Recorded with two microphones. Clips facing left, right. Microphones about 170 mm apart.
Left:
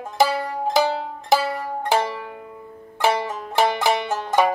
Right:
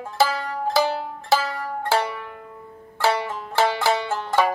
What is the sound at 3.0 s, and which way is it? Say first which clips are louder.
Banjo: left 1 dB; 20° left (ahead or behind).